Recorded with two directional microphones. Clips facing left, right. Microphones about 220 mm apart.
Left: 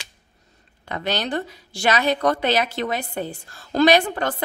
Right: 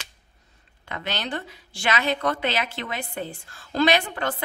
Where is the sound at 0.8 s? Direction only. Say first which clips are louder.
Left 6 dB; 40° left (ahead or behind).